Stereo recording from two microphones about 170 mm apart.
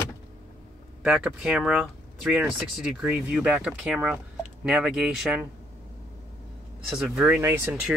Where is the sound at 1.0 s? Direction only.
5° right (ahead or behind).